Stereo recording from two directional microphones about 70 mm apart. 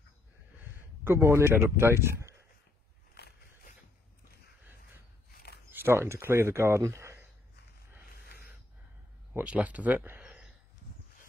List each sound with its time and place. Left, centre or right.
1.0 s a man's voice: right
5.7 s speech: right
9.5 s speech: right
10.2 s a sound: centre